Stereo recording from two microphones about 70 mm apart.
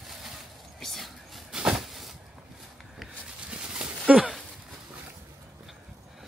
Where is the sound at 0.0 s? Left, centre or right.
Centre.